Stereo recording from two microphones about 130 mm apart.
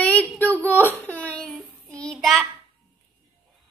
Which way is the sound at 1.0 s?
10° left (ahead or behind).